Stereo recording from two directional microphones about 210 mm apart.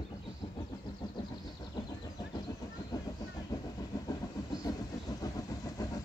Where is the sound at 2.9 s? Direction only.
15° left (ahead or behind).